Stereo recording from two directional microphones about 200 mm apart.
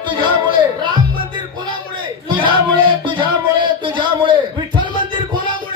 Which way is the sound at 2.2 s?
25° right (ahead or behind).